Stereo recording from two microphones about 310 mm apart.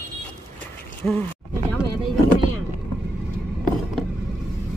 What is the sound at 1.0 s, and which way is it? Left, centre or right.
Speech, centre.